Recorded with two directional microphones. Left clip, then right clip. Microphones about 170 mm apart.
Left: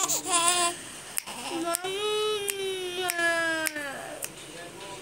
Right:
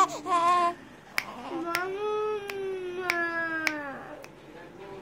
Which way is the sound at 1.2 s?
35° right (ahead or behind).